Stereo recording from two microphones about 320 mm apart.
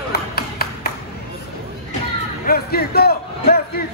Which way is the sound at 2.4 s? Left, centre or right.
Left.